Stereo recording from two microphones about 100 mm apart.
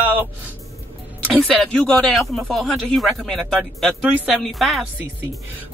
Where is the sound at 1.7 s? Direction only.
10° left (ahead or behind).